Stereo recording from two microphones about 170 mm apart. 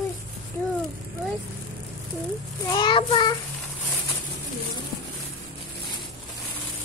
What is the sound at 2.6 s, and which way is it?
Speech, 25° left (ahead or behind).